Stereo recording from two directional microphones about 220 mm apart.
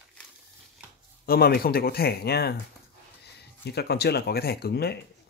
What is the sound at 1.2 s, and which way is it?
Speech, 45° left (ahead or behind).